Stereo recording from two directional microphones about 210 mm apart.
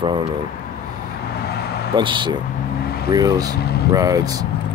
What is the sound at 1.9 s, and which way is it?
Speech, 20° right (ahead or behind).